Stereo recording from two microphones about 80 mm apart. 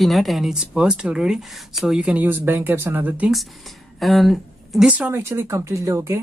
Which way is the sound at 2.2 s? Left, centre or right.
Right.